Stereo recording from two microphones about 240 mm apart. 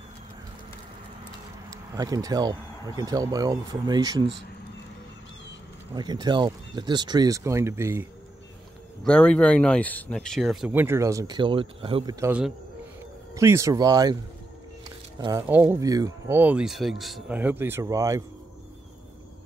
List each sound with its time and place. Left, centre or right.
1.7 s speech: centre
5.9 s speech: centre
9.0 s speech: centre
15.1 s speech: centre